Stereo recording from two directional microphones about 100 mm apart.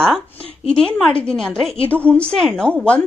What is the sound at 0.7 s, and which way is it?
A woman's voice, 5° left (ahead or behind).